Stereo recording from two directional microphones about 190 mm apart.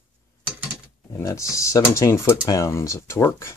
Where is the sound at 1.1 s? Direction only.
15° left (ahead or behind).